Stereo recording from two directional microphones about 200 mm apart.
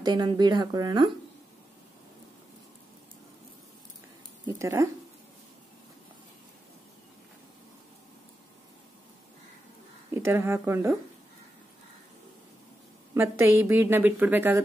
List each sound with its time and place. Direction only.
0.0 s speech: 20° right (ahead or behind)
4.5 s a woman's voice: 15° right (ahead or behind)
10.1 s a woman's voice: 15° right (ahead or behind)
13.1 s a woman's voice: 15° right (ahead or behind)